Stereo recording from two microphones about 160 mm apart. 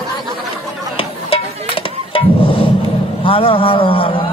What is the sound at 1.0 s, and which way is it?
Music, 35° left (ahead or behind).